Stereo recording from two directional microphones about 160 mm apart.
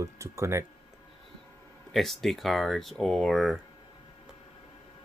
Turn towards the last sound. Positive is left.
turn(degrees=0)  # may be behind; listen again after turning